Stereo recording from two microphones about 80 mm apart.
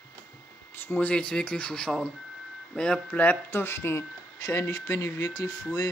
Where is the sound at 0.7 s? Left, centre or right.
Left.